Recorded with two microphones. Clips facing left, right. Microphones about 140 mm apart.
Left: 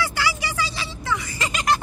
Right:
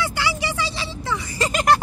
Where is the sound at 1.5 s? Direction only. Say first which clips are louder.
Right 4 dB; 55° right (ahead or behind).